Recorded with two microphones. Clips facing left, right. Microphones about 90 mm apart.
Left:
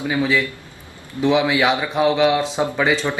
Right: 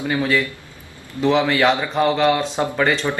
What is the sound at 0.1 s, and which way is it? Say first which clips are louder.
A man's voice: even; 5° left (ahead or behind).